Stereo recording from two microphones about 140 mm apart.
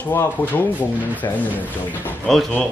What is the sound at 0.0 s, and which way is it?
Speech, 15° left (ahead or behind).